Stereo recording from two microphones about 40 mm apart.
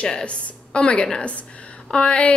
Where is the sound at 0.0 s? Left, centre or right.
Left.